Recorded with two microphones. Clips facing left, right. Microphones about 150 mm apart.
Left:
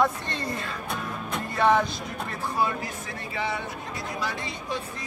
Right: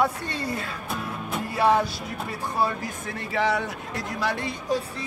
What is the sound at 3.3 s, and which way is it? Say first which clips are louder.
Speech: right 6 dB; 75° right (ahead or behind).